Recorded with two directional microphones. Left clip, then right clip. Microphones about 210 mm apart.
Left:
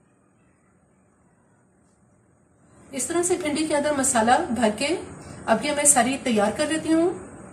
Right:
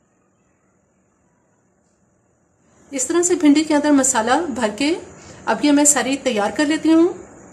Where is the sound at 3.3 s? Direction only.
50° right (ahead or behind).